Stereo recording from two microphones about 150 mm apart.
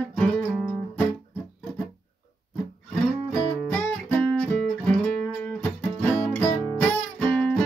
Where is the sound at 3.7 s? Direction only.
10° left (ahead or behind).